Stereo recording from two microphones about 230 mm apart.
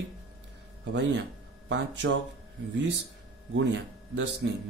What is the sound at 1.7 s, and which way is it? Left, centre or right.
Speech, right.